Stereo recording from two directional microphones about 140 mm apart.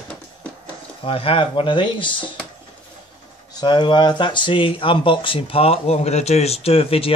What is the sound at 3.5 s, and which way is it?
Speech, 30° left (ahead or behind).